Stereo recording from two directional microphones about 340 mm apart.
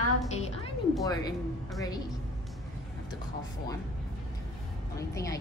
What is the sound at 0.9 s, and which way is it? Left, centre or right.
A woman's voice, centre.